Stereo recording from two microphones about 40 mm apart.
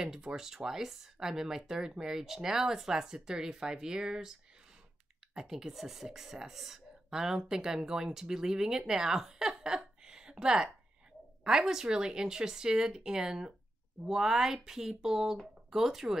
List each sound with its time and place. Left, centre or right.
0.0 s speech: centre